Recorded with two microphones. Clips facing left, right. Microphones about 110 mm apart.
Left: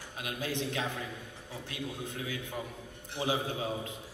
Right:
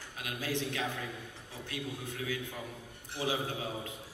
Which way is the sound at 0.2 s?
25° left (ahead or behind).